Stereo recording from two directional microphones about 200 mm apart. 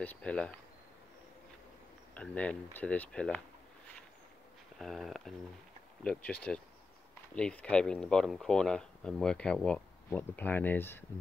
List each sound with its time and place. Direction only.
0.0 s speech: 5° left (ahead or behind)
2.1 s speech: 5° left (ahead or behind)
4.7 s speech: centre (ahead or behind)